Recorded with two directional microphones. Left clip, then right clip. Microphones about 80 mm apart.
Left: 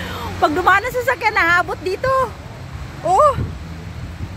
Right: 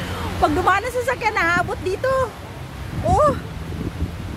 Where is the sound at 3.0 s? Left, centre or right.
Left.